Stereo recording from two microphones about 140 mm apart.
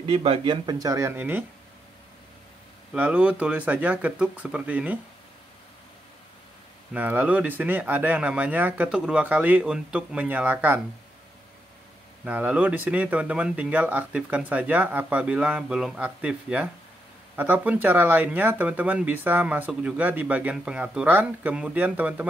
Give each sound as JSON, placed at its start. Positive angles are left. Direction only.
{"t": 0.0, "sound": "speech", "side_deg": -45}
{"t": 2.9, "sound": "speech", "side_deg": -10}
{"t": 6.9, "sound": "speech", "side_deg": -10}
{"t": 12.3, "sound": "speech", "side_deg": -10}